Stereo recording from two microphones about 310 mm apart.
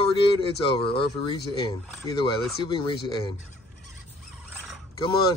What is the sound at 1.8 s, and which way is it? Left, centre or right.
Speech, centre.